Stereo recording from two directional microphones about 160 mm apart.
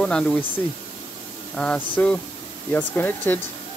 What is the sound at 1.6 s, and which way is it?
Speech, 5° left (ahead or behind).